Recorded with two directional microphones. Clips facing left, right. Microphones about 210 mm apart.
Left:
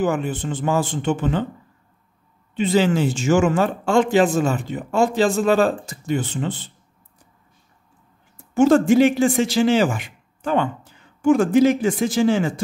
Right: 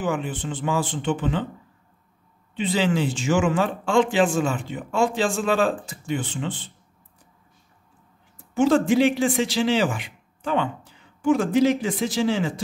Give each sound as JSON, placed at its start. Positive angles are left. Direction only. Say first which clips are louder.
{"t": 0.0, "sound": "a man's voice", "louder": "left 5 dB", "side_deg": 45}
{"t": 2.5, "sound": "speech", "louder": "left 4 dB", "side_deg": 45}
{"t": 8.5, "sound": "a man's voice", "louder": "left 4 dB", "side_deg": 45}